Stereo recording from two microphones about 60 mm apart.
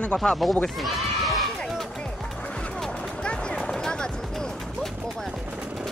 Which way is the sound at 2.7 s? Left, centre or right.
Centre.